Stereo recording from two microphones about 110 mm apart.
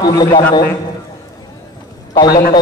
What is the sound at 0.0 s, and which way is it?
Speech, 40° left (ahead or behind).